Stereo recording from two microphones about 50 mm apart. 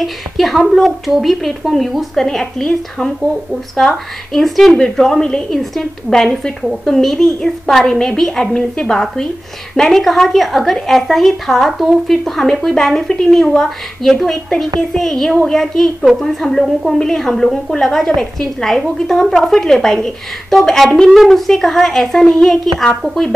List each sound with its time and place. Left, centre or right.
0.0 s a woman's voice: centre
4.3 s a woman's voice: centre